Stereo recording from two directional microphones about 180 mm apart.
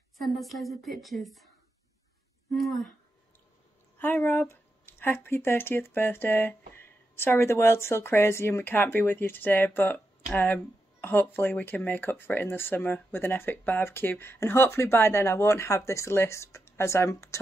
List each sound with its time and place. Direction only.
0.2 s a woman's voice: centre (ahead or behind)
2.5 s a woman's voice: centre (ahead or behind)
4.0 s speech: 10° left (ahead or behind)